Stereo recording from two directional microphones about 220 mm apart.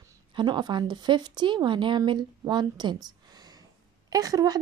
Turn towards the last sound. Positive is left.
turn(degrees=-15)  # may be behind; listen again after turning